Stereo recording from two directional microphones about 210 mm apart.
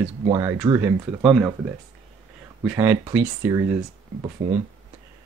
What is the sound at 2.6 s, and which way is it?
Speech, 10° right (ahead or behind).